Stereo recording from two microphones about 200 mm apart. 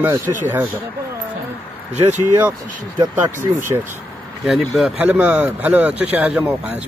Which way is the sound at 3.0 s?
15° right (ahead or behind).